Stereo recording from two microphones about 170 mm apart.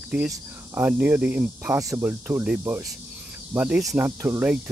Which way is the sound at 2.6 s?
20° right (ahead or behind).